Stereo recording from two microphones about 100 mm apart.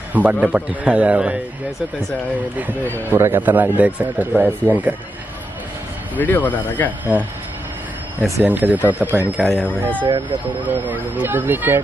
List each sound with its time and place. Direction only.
0.1 s a man's voice: 15° right (ahead or behind)
3.1 s a man's voice: 20° right (ahead or behind)
6.1 s speech: 20° left (ahead or behind)
8.2 s a man's voice: 15° right (ahead or behind)
9.4 s speech: 5° left (ahead or behind)
9.7 s speech: 15° left (ahead or behind)
10.7 s speech: 20° right (ahead or behind)